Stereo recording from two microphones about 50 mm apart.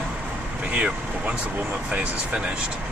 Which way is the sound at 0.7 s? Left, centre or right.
Right.